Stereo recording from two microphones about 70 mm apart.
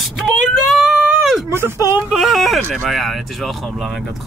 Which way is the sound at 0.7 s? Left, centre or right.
Centre.